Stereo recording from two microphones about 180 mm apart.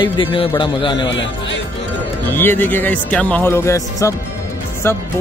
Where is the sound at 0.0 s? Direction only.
25° left (ahead or behind).